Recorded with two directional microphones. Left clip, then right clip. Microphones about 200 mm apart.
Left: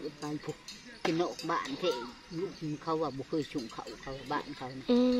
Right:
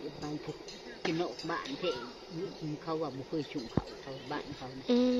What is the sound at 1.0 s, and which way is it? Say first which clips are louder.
Speech: left 3 dB; 60° left (ahead or behind).